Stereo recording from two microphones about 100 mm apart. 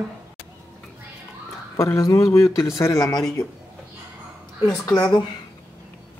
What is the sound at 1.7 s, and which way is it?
Speech, 30° left (ahead or behind).